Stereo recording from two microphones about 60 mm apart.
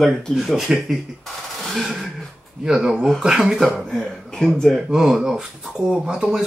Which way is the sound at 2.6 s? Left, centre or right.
Centre.